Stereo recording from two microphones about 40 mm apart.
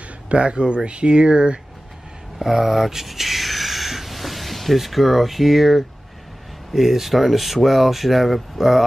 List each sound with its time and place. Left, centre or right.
0.3 s speech: right
2.3 s a sound: centre
6.7 s speech: centre